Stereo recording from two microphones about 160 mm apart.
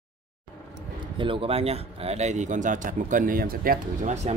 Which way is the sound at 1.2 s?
35° right (ahead or behind).